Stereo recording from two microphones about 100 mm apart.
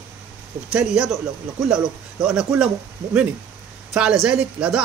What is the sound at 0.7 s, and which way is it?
Speech, 10° right (ahead or behind).